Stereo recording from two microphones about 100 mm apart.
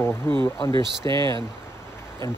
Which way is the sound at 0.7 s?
50° right (ahead or behind).